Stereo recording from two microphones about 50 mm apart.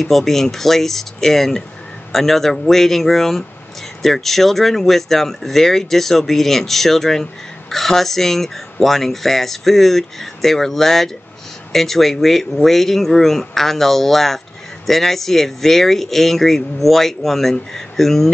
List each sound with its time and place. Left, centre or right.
0.0 s speech: centre